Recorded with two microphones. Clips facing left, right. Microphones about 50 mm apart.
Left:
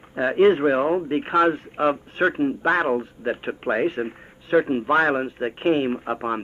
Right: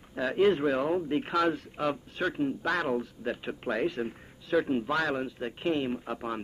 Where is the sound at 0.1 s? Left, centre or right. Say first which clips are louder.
Left 8 dB; left.